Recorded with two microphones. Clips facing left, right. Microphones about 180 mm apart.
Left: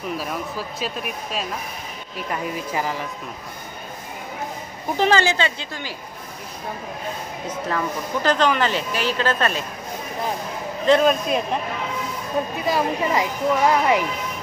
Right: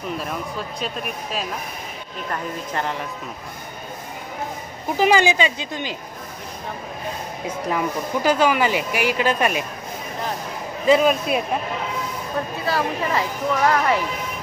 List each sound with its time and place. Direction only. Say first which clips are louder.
0.2 s speech: even; 5° left (ahead or behind)
4.9 s speech: right 2 dB; 10° right (ahead or behind)
7.4 s speech: right 2 dB; 10° right (ahead or behind)
10.9 s speech: even; 5° right (ahead or behind)
12.6 s speech: left 1 dB; 15° left (ahead or behind)